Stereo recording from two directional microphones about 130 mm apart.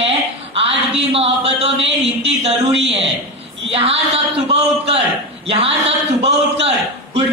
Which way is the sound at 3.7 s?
50° right (ahead or behind).